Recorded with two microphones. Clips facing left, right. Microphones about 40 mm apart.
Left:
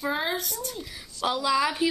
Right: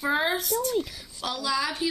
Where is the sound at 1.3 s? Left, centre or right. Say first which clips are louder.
Left 4 dB; centre.